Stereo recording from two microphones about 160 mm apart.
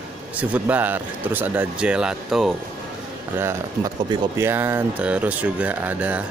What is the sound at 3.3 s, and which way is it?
Speech, 15° right (ahead or behind).